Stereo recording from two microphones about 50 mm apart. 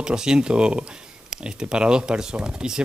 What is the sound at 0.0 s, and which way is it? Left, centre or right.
A man's voice, centre.